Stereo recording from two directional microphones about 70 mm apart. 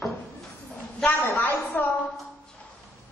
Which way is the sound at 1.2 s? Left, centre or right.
Left.